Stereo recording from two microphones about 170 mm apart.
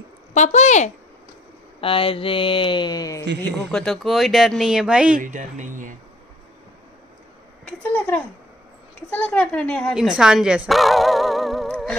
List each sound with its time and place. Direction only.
0.3 s speech: 45° left (ahead or behind)
1.8 s speech: 30° left (ahead or behind)
3.7 s speech: centre (ahead or behind)
5.2 s speech: 50° right (ahead or behind)
7.6 s a woman's voice: 10° left (ahead or behind)